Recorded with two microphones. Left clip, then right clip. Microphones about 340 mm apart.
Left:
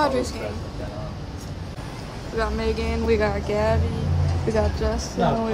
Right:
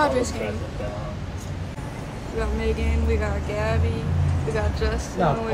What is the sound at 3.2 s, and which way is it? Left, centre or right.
Vehicle, left.